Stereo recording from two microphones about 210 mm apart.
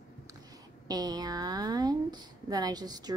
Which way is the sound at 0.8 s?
20° right (ahead or behind).